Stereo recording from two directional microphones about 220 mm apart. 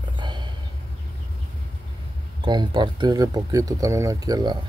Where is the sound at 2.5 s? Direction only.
20° right (ahead or behind).